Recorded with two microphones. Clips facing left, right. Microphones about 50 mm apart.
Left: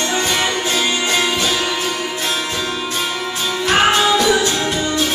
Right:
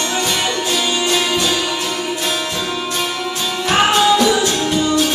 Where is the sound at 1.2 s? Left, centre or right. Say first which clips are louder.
Even; centre.